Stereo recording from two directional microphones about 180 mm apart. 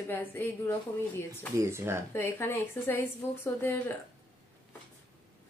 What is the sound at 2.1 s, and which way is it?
A woman's voice, 15° left (ahead or behind).